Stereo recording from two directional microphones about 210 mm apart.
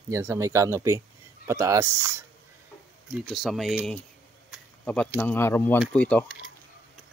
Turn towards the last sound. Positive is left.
turn(degrees=5)  # may be behind; listen again after turning